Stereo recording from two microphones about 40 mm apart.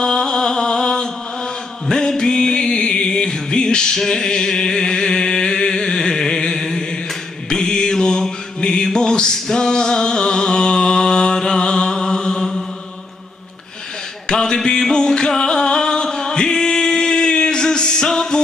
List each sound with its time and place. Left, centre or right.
0.0 s music: centre
5.9 s chant: centre
7.4 s mantra: centre
14.2 s music: centre